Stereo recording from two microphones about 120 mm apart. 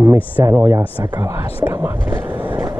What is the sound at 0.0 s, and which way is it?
Speech, 20° right (ahead or behind).